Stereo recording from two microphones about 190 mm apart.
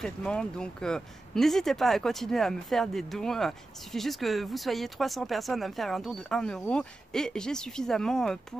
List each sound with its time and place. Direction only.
0.0 s speech: 5° left (ahead or behind)